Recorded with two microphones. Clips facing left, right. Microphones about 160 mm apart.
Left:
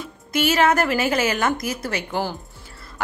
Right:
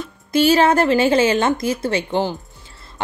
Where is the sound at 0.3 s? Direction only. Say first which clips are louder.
Right 4 dB; 30° right (ahead or behind).